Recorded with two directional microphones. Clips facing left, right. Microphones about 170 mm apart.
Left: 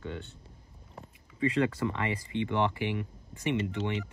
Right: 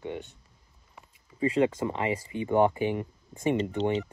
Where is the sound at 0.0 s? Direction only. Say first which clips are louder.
Right 3 dB; 20° right (ahead or behind).